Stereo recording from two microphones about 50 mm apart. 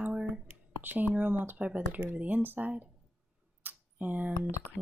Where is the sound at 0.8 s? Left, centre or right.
Right.